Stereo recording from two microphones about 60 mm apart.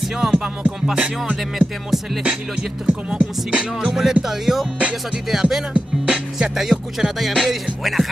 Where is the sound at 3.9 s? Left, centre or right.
Centre.